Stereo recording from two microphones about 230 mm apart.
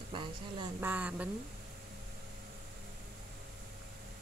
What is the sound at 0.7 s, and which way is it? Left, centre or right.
Speech, centre.